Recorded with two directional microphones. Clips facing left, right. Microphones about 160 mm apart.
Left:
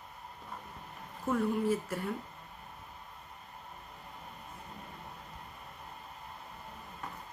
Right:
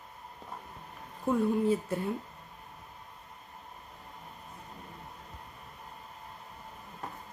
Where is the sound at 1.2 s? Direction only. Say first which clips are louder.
Right 3 dB; 15° right (ahead or behind).